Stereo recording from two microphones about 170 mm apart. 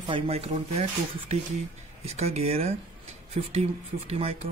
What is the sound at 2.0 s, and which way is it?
Speech, 40° right (ahead or behind).